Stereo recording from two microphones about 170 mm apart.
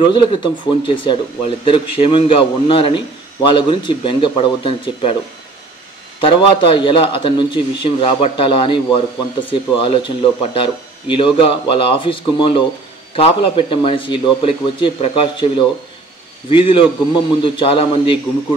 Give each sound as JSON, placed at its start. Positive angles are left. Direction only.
{"t": 0.0, "sound": "a man's voice", "side_deg": 30}
{"t": 6.2, "sound": "speech", "side_deg": 30}